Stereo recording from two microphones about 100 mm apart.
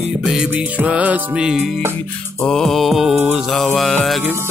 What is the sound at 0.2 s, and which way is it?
Music, 5° right (ahead or behind).